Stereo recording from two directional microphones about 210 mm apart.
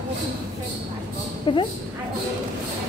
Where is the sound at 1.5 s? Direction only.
25° left (ahead or behind).